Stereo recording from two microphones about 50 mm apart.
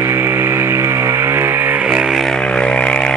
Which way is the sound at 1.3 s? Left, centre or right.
Right.